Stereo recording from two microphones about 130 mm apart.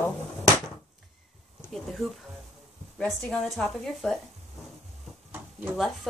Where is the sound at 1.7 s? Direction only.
5° left (ahead or behind).